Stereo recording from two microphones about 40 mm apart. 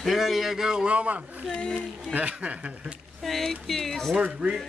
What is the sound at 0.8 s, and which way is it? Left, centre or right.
Speech, right.